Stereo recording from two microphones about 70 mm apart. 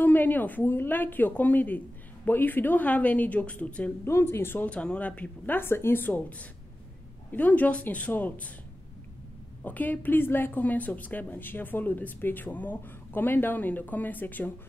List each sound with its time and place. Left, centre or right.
0.0 s a woman's voice: left
4.0 s speech: left
4.6 s a woman's voice: centre
5.6 s a woman's voice: left
9.6 s a woman's voice: left